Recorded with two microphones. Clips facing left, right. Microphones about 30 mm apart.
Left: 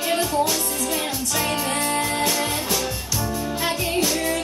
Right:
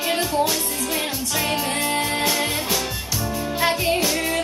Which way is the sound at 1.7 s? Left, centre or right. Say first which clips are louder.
Even; right.